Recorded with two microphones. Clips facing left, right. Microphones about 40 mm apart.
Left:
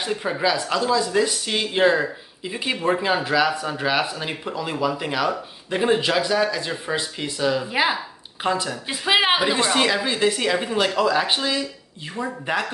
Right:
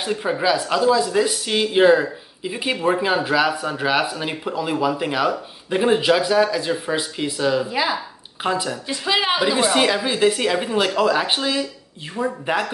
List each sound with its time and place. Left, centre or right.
0.0 s speech: centre
7.7 s speech: left
8.4 s speech: centre
8.8 s speech: left
10.0 s speech: centre
12.2 s speech: right